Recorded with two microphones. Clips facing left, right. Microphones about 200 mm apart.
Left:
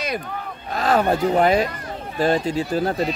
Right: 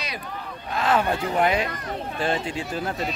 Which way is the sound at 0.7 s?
40° left (ahead or behind).